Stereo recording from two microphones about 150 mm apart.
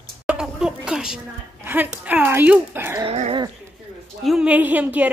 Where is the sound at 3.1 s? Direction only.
45° right (ahead or behind).